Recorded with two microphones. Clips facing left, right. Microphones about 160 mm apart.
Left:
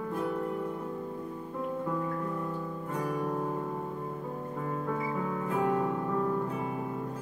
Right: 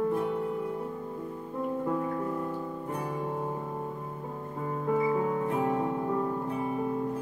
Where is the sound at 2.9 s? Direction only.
25° right (ahead or behind).